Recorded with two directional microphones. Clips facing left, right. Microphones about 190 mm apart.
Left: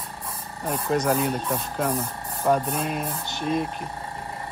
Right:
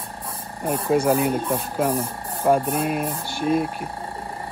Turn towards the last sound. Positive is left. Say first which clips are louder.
# right 4 dB
turn(degrees=-5)  # may be behind; listen again after turning